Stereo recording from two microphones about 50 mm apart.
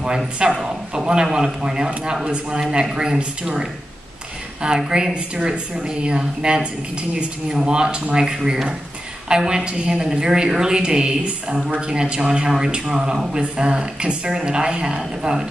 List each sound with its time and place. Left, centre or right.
0.6 s speech: centre